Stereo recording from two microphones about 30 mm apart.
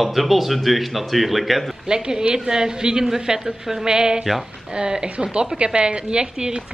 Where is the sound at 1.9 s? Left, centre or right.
Right.